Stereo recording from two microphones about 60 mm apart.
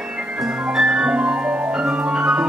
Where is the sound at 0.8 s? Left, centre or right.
Centre.